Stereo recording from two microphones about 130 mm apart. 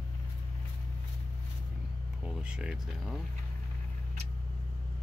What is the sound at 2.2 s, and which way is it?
Speech, 5° right (ahead or behind).